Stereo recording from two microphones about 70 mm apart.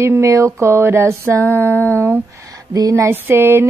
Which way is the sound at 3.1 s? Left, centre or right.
Right.